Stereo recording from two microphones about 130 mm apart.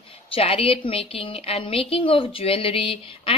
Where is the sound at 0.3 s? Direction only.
45° left (ahead or behind).